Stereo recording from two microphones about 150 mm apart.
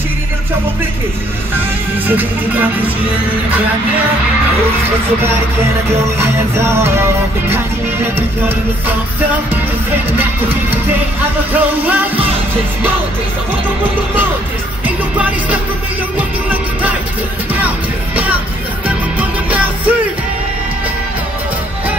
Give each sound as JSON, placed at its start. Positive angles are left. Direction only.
{"t": 2.0, "sound": "music", "side_deg": -10}
{"t": 5.9, "sound": "music", "side_deg": -20}
{"t": 11.5, "sound": "music", "side_deg": -10}
{"t": 16.2, "sound": "music", "side_deg": -10}